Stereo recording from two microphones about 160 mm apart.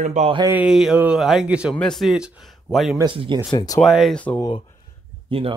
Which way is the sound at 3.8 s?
Centre (ahead or behind).